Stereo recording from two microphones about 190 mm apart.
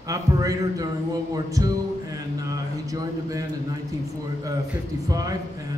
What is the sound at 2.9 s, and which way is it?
Speech, 20° right (ahead or behind).